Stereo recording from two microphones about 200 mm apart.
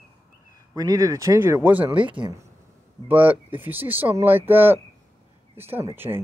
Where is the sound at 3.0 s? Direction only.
10° right (ahead or behind).